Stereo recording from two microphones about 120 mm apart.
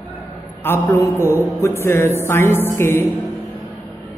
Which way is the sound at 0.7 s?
20° left (ahead or behind).